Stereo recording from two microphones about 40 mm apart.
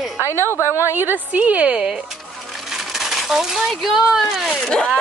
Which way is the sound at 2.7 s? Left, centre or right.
Centre.